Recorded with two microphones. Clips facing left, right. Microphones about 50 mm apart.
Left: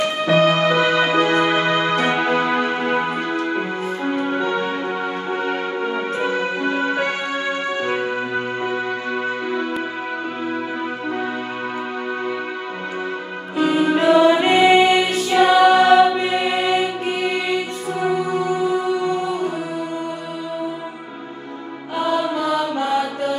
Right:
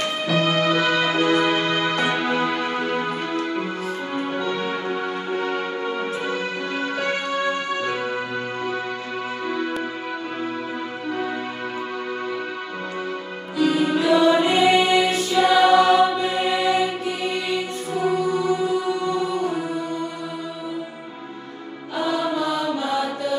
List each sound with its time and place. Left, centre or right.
0.3 s music: left
13.6 s music: left
15.2 s choir: left
15.7 s music: left
21.9 s mantra: left